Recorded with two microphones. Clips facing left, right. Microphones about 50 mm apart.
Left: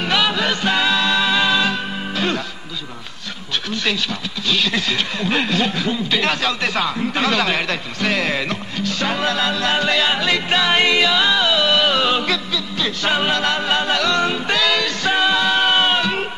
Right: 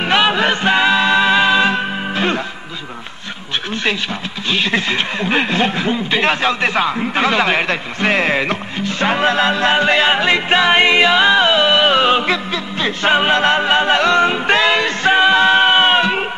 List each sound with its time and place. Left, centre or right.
0.0 s music: right
4.5 s speech: right